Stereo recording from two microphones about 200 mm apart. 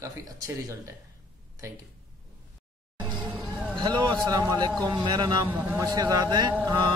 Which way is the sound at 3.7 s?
20° right (ahead or behind).